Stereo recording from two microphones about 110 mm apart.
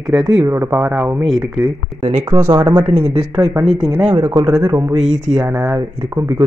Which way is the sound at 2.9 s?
90° right.